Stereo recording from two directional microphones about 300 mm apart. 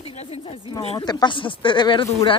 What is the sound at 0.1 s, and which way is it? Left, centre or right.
Speech, centre.